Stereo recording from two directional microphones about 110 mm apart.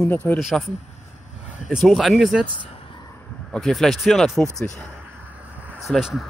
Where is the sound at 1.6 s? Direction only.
Centre (ahead or behind).